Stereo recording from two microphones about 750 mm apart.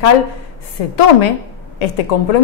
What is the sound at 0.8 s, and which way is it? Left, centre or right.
A woman's voice, left.